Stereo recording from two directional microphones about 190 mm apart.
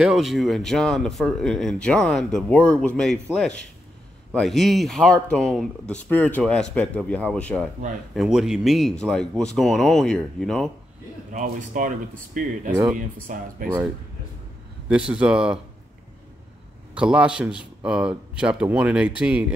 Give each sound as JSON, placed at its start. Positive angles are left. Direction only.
{"t": 0.0, "sound": "speech", "side_deg": 0}
{"t": 11.3, "sound": "speech", "side_deg": -45}
{"t": 14.9, "sound": "speech", "side_deg": -5}
{"t": 16.9, "sound": "speech", "side_deg": -5}